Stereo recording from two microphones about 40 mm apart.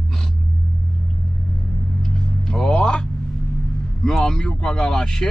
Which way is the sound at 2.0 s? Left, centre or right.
Centre.